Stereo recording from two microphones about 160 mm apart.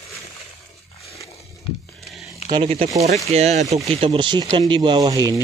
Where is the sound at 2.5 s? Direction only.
40° right (ahead or behind).